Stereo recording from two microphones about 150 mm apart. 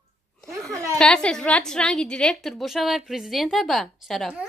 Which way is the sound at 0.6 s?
Centre (ahead or behind).